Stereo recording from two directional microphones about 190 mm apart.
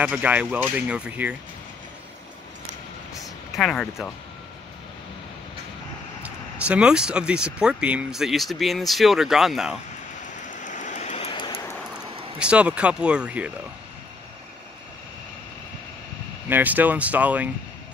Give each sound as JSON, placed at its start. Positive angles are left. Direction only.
{"t": 0.0, "sound": "speech", "side_deg": -5}
{"t": 3.5, "sound": "speech", "side_deg": 0}
{"t": 6.2, "sound": "speech", "side_deg": -5}
{"t": 10.3, "sound": "vehicle", "side_deg": 40}
{"t": 11.9, "sound": "speech", "side_deg": -5}
{"t": 16.4, "sound": "speech", "side_deg": -10}